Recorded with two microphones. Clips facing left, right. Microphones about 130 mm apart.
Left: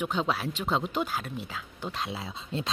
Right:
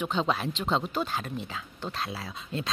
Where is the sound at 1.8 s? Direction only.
15° left (ahead or behind).